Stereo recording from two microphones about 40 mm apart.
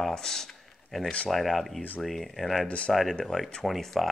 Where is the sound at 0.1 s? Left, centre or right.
Centre.